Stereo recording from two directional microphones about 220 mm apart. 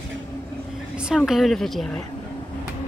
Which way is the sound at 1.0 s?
5° right (ahead or behind).